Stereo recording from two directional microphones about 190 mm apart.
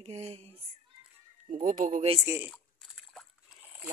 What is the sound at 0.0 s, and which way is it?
Speech, 35° right (ahead or behind).